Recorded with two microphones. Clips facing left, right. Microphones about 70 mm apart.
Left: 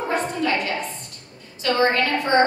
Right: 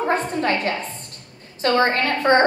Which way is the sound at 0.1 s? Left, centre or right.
Right.